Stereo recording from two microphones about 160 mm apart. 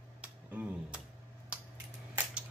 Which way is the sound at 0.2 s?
10° right (ahead or behind).